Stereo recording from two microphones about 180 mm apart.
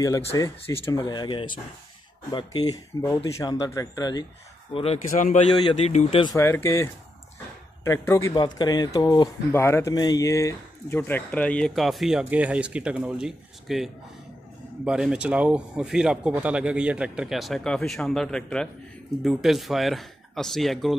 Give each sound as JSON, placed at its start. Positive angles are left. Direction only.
{"t": 0.4, "sound": "speech", "side_deg": 20}
{"t": 5.1, "sound": "a man's voice", "side_deg": 45}
{"t": 6.3, "sound": "speech", "side_deg": 15}
{"t": 14.9, "sound": "speech", "side_deg": -5}